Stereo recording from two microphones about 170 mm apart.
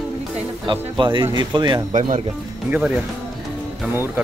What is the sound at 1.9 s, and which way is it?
Speech, 40° right (ahead or behind).